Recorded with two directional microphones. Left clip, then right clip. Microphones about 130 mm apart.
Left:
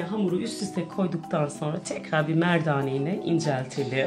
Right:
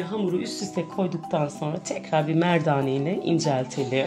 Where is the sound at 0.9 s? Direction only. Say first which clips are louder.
Right 1 dB; 10° right (ahead or behind).